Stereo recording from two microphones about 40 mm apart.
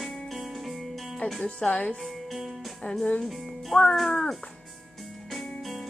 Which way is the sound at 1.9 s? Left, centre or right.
Centre.